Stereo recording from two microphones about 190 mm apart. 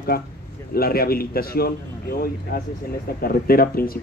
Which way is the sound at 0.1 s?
50° left (ahead or behind).